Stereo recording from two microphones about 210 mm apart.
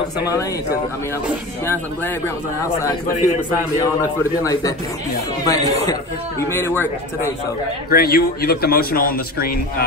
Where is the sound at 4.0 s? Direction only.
15° left (ahead or behind).